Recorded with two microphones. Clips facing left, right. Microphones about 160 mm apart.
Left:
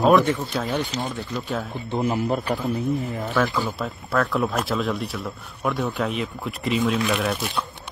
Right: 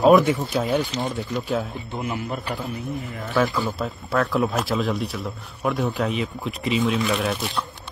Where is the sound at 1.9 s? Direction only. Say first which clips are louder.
Left 6 dB; 35° left (ahead or behind).